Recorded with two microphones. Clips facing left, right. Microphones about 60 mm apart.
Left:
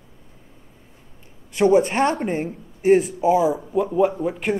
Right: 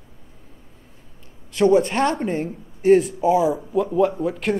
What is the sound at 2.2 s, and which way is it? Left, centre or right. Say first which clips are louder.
Speech: even; left.